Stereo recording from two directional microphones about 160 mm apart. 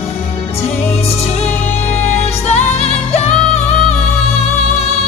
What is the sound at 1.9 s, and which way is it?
Music, 40° left (ahead or behind).